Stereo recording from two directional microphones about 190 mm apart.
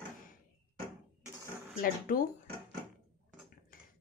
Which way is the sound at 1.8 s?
50° left (ahead or behind).